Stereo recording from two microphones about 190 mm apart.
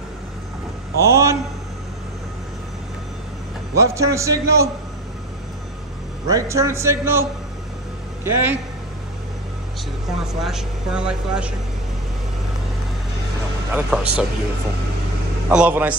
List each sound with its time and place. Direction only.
0.9 s a man's voice: 15° right (ahead or behind)
3.7 s a man's voice: 15° right (ahead or behind)
6.2 s a man's voice: 15° right (ahead or behind)
10.2 s speech: centre (ahead or behind)
13.7 s speech: 5° right (ahead or behind)
15.4 s a man's voice: 5° right (ahead or behind)